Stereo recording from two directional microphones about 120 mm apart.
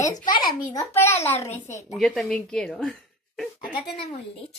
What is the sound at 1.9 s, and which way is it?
Speech, centre (ahead or behind).